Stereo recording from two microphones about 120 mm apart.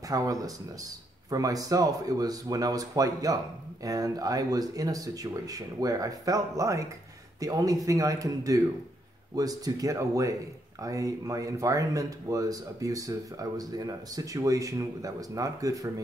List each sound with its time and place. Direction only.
0.1 s speech: 30° right (ahead or behind)